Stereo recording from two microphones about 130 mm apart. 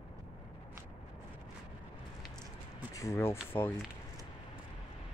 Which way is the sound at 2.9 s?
25° left (ahead or behind).